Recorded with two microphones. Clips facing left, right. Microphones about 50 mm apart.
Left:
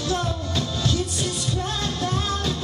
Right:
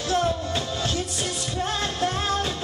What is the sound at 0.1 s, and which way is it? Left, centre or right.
Music, right.